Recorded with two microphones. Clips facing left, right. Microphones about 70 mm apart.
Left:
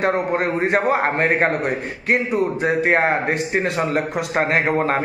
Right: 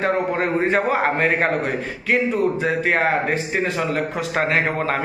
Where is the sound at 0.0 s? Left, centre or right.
Left.